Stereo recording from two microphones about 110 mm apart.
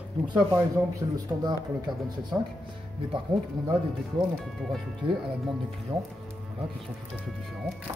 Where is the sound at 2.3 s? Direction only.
10° right (ahead or behind).